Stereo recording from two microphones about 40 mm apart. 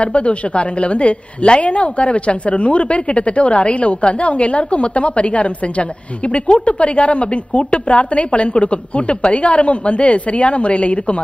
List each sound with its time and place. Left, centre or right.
0.0 s a woman's voice: left